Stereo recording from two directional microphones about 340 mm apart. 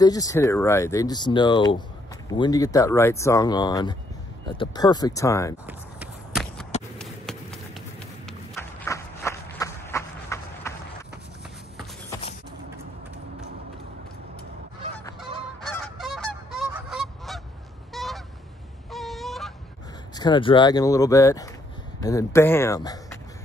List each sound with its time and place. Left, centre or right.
0.0 s speech: centre
5.7 s a sound: centre
7.0 s run: centre
12.1 s mechanisms: centre
15.6 s goose: centre
18.9 s fowl: centre
20.2 s speech: centre